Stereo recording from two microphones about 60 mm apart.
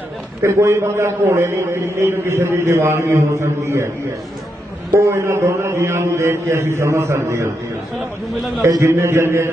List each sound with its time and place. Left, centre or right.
0.4 s a man's voice: right
5.0 s a man's voice: right
8.8 s a man's voice: right